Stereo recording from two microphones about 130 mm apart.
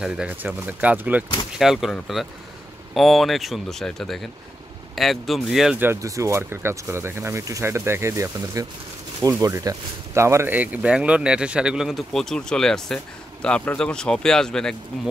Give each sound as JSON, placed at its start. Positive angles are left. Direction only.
{"t": 0.0, "sound": "speech", "side_deg": -10}
{"t": 5.8, "sound": "speech", "side_deg": -20}